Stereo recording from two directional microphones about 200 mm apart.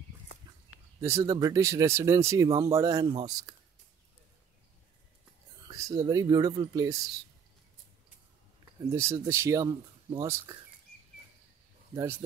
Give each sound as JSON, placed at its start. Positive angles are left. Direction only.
{"t": 1.0, "sound": "speech", "side_deg": -15}
{"t": 5.7, "sound": "speech", "side_deg": -15}
{"t": 8.9, "sound": "speech", "side_deg": -15}
{"t": 11.9, "sound": "speech", "side_deg": -15}